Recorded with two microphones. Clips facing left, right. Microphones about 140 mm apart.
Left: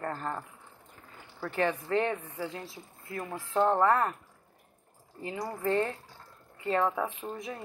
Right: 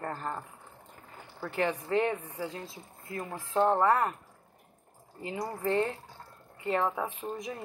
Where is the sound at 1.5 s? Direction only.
15° right (ahead or behind).